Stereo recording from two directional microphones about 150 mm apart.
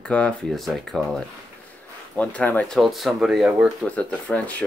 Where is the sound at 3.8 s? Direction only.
10° left (ahead or behind).